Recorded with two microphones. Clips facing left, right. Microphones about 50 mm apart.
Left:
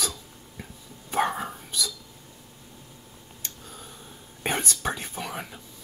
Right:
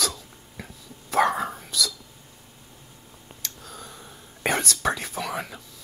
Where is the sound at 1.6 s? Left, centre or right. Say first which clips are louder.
Right 4 dB; right.